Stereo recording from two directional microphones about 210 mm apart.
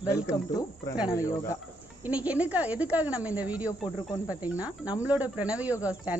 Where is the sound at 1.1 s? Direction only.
15° left (ahead or behind).